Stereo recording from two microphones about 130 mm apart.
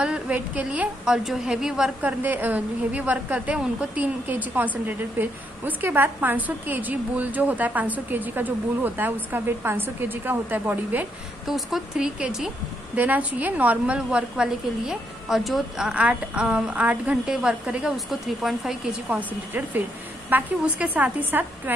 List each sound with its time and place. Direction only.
0.0 s a woman's voice: 10° right (ahead or behind)
11.4 s a woman's voice: centre (ahead or behind)